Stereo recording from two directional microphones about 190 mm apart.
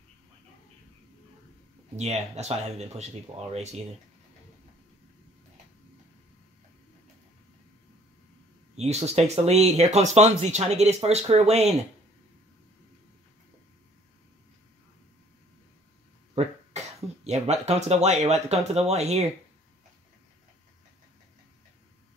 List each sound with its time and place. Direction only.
2.0 s speech: 35° right (ahead or behind)
8.7 s speech: 35° right (ahead or behind)
16.4 s cough: 35° right (ahead or behind)
17.3 s speech: 35° right (ahead or behind)